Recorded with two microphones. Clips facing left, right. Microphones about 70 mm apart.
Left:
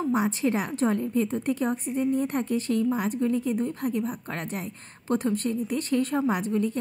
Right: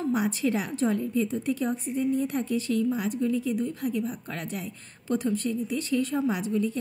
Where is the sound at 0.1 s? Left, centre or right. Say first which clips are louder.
Left 1 dB; left.